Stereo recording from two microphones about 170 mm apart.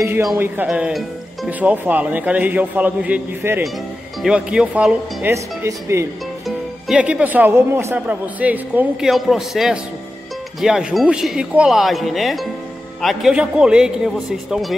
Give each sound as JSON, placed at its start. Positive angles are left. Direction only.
{"t": 0.0, "sound": "speech", "side_deg": -15}
{"t": 6.4, "sound": "speech", "side_deg": -5}